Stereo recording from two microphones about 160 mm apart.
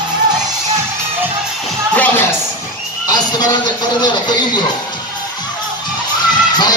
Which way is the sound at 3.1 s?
25° left (ahead or behind).